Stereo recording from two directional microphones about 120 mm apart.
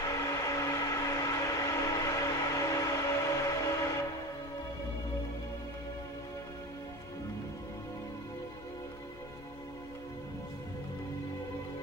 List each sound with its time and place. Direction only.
0.3 s train: 25° left (ahead or behind)